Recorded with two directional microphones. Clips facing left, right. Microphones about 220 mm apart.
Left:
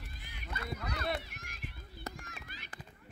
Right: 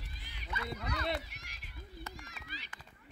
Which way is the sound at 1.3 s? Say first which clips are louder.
Left 5 dB; 50° left (ahead or behind).